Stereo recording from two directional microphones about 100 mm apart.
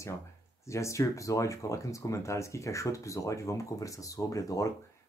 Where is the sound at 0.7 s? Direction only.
30° left (ahead or behind).